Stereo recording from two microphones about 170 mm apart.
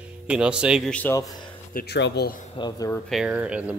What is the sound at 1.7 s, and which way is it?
Speech, 80° left.